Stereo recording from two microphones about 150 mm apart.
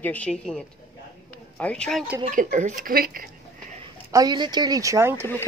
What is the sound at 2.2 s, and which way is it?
Speech, 60° right (ahead or behind).